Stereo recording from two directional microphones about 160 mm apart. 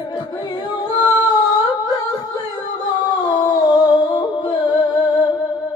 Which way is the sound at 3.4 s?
30° left (ahead or behind).